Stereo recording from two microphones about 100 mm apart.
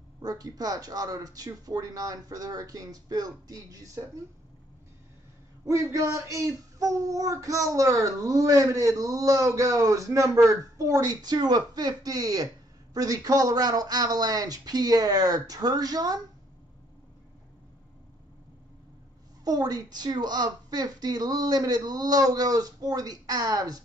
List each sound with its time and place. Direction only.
0.2 s speech: 40° right (ahead or behind)
5.7 s speech: 30° right (ahead or behind)
19.4 s speech: 40° right (ahead or behind)